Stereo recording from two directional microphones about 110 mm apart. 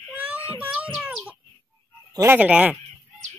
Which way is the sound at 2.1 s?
20° right (ahead or behind).